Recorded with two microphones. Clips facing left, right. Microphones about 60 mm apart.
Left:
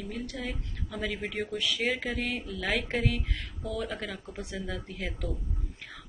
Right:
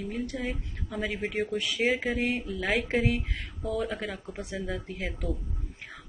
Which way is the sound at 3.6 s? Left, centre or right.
Centre.